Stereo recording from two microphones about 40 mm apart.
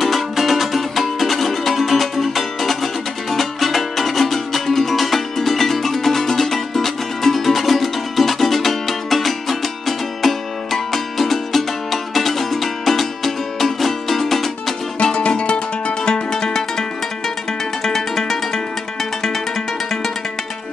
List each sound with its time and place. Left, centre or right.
0.0 s music: centre
15.1 s music: left
16.1 s music: centre
17.8 s music: centre